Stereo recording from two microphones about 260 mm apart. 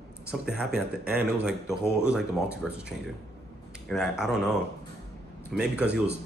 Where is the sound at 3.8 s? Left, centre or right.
Centre.